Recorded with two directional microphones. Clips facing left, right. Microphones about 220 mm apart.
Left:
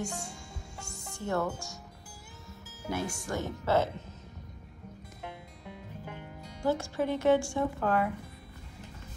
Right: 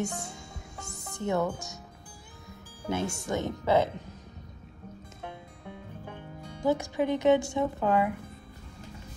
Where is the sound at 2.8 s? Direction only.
25° right (ahead or behind).